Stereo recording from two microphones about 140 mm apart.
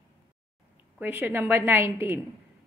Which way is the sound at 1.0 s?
15° right (ahead or behind).